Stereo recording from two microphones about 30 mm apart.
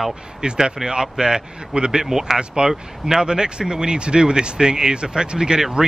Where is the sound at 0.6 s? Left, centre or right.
Right.